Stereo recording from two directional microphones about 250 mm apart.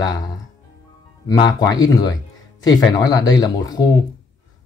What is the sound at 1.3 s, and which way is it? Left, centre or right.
Speech, centre.